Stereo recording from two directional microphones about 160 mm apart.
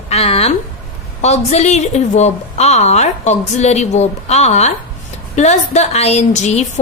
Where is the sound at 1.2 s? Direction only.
45° left (ahead or behind).